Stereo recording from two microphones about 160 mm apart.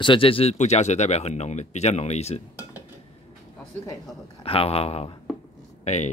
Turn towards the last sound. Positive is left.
turn(degrees=45)  # may be behind; listen again after turning